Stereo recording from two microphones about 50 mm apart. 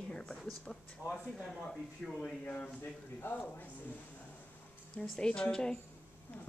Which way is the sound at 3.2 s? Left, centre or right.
Left.